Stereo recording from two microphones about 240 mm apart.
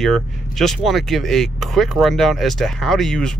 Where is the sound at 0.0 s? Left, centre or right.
Centre.